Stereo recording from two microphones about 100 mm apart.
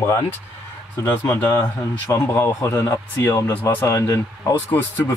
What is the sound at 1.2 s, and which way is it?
Speech, 25° left (ahead or behind).